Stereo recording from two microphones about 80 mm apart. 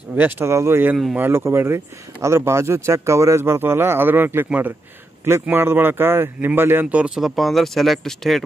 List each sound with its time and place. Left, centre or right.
0.1 s speech: right
7.2 s speech: centre